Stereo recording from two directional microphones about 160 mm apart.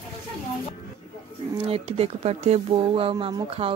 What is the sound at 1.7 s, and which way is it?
Speech, 40° right (ahead or behind).